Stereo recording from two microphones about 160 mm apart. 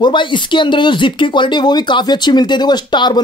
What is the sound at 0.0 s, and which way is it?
Speech, 30° left (ahead or behind).